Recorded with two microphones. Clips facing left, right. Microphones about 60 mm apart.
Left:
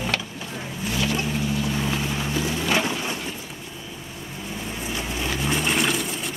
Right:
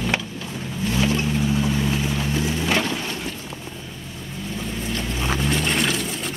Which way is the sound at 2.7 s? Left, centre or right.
Centre.